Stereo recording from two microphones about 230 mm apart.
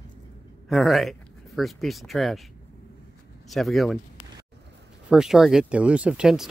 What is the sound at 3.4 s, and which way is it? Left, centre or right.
Speech, centre.